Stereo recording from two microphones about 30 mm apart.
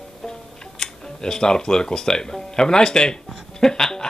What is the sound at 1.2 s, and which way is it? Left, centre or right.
Speech, left.